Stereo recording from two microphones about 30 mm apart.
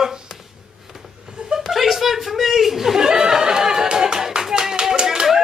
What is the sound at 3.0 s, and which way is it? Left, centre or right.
Music, right.